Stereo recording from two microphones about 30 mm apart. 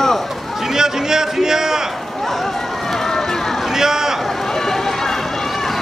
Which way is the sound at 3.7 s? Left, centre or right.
Centre.